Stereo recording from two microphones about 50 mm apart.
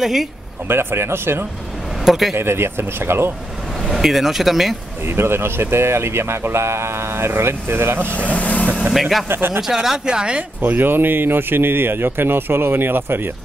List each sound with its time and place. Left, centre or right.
0.0 s speech: centre
0.7 s speech: right
2.0 s speech: centre
2.3 s speech: right
3.8 s speech: centre
5.0 s speech: right
8.1 s vehicle: left
9.3 s speech: right
9.6 s speech: centre
10.6 s speech: right